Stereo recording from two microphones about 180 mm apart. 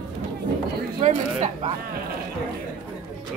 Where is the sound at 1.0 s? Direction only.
35° right (ahead or behind).